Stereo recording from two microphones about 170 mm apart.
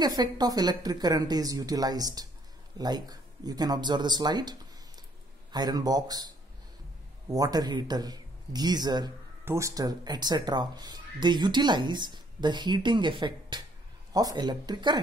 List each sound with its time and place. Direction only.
0.0 s speech: 25° right (ahead or behind)
7.2 s speech: 20° right (ahead or behind)